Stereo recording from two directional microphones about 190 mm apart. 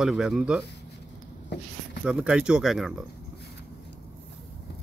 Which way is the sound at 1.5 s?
60° left (ahead or behind).